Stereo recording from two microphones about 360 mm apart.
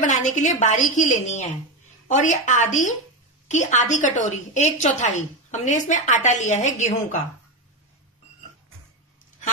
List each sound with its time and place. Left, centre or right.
0.0 s a woman's voice: left